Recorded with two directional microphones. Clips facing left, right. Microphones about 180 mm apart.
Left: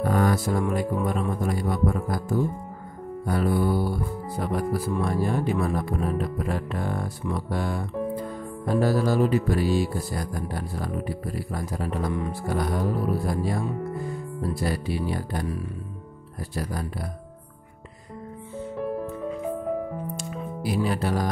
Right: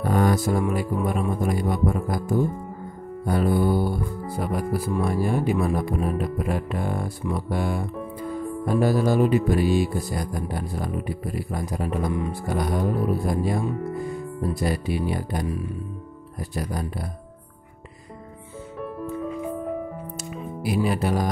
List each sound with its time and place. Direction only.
0.1 s music: 15° right (ahead or behind)
0.7 s speech: 10° right (ahead or behind)
16.5 s speech: 15° right (ahead or behind)
20.2 s music: 15° right (ahead or behind)